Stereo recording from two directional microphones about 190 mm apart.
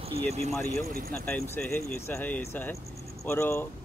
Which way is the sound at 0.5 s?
10° left (ahead or behind).